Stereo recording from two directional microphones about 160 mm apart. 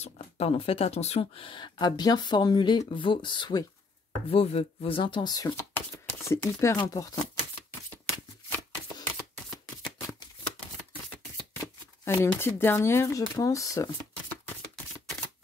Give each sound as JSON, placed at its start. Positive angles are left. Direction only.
{"t": 0.0, "sound": "speech", "side_deg": 40}
{"t": 4.3, "sound": "speech", "side_deg": 40}
{"t": 12.0, "sound": "speech", "side_deg": 15}